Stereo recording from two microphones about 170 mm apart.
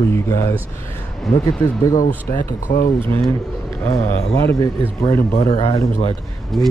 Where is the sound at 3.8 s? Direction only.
15° left (ahead or behind).